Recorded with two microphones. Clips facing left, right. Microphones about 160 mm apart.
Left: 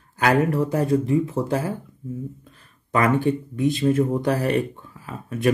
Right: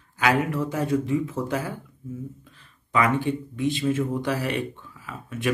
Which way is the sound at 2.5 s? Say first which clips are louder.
Left 1 dB; 45° left (ahead or behind).